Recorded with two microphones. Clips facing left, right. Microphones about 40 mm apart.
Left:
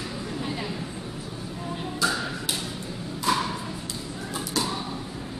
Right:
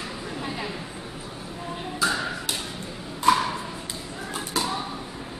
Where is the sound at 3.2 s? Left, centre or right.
Centre.